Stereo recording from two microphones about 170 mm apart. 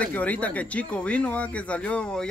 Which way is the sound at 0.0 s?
10° left (ahead or behind).